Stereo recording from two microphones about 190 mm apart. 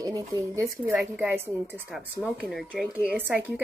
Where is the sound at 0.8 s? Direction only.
5° right (ahead or behind).